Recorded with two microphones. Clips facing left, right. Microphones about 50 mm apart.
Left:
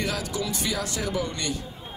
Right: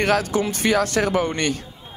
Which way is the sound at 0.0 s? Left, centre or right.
Right.